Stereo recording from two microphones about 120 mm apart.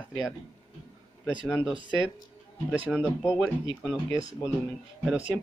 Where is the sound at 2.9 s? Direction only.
5° left (ahead or behind).